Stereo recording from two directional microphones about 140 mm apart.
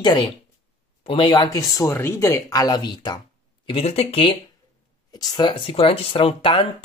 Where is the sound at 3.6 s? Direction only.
45° left (ahead or behind).